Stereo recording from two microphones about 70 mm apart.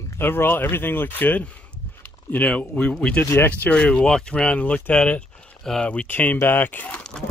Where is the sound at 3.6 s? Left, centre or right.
Centre.